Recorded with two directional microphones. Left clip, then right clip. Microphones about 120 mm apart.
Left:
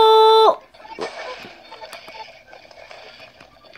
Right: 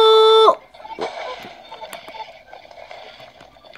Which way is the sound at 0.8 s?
20° left (ahead or behind).